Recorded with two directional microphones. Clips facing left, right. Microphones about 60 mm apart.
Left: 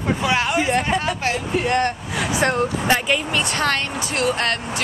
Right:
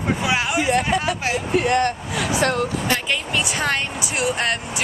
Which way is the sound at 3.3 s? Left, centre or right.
Centre.